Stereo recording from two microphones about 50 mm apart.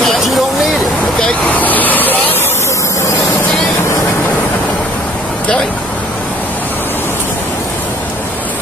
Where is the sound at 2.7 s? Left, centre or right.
Left.